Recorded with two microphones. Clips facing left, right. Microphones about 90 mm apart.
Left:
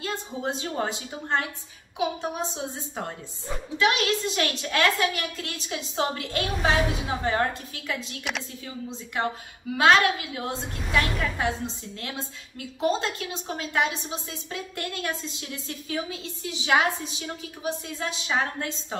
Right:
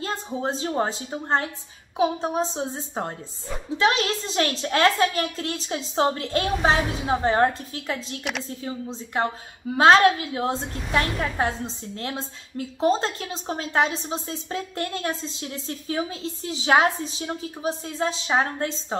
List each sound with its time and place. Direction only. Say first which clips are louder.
0.0 s a woman's voice: right 3 dB; 35° right (ahead or behind)
8.2 s a woman's voice: right 2 dB; centre (ahead or behind)
8.5 s a woman's voice: right 5 dB; 35° right (ahead or behind)